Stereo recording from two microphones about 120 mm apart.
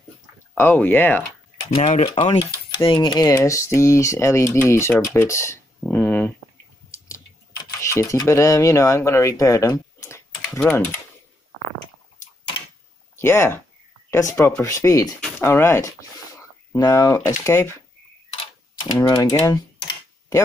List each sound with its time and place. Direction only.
0.6 s speech: 15° left (ahead or behind)
1.8 s speech: 70° left (ahead or behind)
2.7 s speech: 45° left (ahead or behind); by 4.9 s 20° left (ahead or behind)
5.0 s a sound: 25° left (ahead or behind)
7.1 s a sound: 25° left (ahead or behind)
10.6 s speech: 10° left (ahead or behind)
13.1 s speech: 20° left (ahead or behind)
15.1 s a sound: 5° left (ahead or behind)
15.4 s speech: 20° left (ahead or behind)
18.9 s speech: 30° left (ahead or behind)